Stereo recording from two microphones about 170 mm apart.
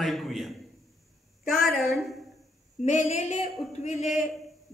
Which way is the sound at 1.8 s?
Centre (ahead or behind).